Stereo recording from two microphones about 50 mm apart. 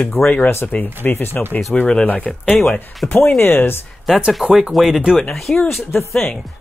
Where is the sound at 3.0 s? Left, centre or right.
Left.